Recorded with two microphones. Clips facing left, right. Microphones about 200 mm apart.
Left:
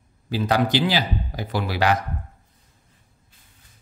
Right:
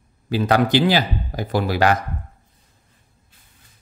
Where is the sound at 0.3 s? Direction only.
55° right (ahead or behind).